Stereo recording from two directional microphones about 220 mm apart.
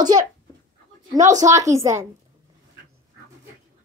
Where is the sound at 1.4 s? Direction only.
15° right (ahead or behind).